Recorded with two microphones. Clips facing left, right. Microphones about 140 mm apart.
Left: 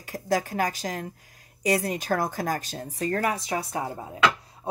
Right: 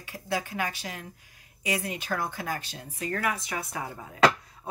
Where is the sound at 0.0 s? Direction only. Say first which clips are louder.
Left 6 dB; 40° left (ahead or behind).